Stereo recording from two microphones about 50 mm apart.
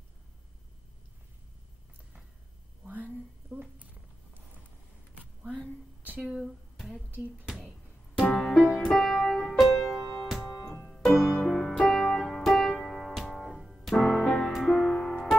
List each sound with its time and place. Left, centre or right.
3.5 s a sound: right
5.1 s a sound: right
8.3 s music: centre
9.6 s music: centre
10.6 s music: left
11.1 s music: centre
12.8 s piano: centre
15.0 s music: left